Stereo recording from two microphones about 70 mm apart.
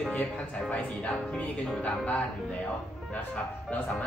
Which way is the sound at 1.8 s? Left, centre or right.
Centre.